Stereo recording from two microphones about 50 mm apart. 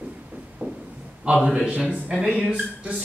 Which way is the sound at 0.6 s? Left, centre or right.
Right.